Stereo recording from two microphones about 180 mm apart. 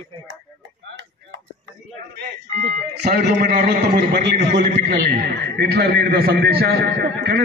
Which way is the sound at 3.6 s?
65° right (ahead or behind).